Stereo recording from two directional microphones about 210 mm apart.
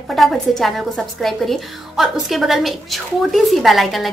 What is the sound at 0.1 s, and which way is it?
A woman's voice, centre (ahead or behind).